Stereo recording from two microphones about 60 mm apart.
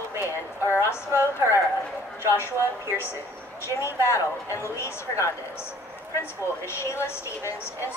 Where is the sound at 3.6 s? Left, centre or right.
Left.